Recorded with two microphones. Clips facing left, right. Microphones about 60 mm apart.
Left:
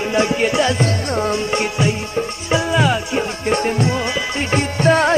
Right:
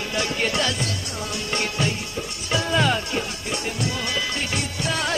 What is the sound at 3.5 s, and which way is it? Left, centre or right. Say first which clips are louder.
Music: left 12 dB; left.